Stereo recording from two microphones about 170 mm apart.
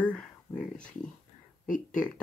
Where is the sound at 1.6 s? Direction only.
50° left (ahead or behind).